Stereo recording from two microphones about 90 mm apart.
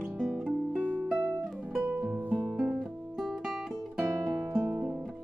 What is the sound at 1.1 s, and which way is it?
Music, 10° right (ahead or behind).